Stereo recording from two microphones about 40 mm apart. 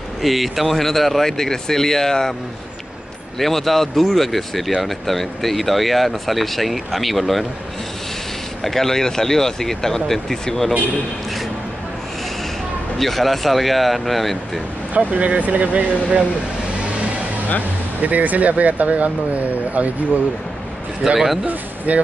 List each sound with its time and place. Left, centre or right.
0.2 s speech: centre
3.3 s speech: centre
8.6 s speech: centre
13.0 s speech: centre
15.0 s speech: right
18.0 s speech: right
21.0 s speech: centre
21.5 s a sound: right